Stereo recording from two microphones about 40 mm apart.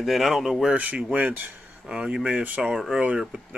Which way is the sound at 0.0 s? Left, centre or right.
Centre.